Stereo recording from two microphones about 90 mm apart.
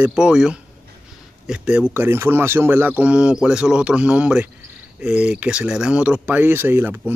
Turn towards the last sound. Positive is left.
turn(degrees=-25)  # may be behind; listen again after turning